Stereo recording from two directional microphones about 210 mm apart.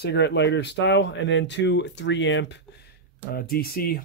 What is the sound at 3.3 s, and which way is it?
Speech, 45° left (ahead or behind).